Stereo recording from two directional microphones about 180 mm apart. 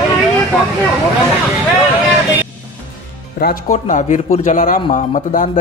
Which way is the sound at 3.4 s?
55° left (ahead or behind).